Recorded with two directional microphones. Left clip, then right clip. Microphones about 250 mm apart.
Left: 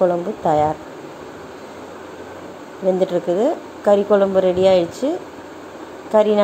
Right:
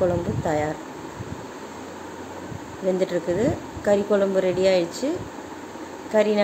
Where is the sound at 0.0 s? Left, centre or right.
Centre.